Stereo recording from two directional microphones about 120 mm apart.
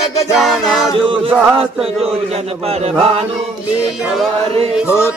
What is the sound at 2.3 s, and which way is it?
Speech, 55° right (ahead or behind).